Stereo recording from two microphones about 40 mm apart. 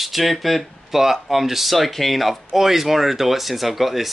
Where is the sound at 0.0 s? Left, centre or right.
Centre.